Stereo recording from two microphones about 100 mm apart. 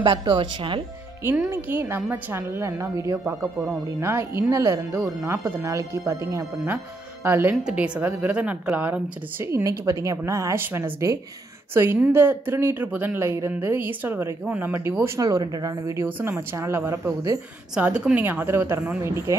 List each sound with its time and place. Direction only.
0.0 s speech: 50° right (ahead or behind)
1.5 s speech: 20° right (ahead or behind)
9.5 s speech: 35° right (ahead or behind)
10.5 s speech: 25° right (ahead or behind)
15.0 s speech: 40° right (ahead or behind)
17.7 s speech: 10° right (ahead or behind); by 19.3 s 25° right (ahead or behind)